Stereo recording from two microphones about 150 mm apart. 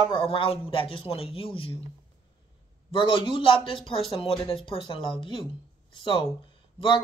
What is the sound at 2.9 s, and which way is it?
Speech, 35° left (ahead or behind).